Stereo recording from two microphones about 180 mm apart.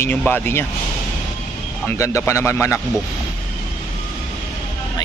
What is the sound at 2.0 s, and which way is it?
Speech, 15° left (ahead or behind).